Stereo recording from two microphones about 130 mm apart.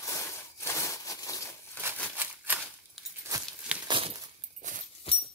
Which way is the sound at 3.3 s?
30° right (ahead or behind).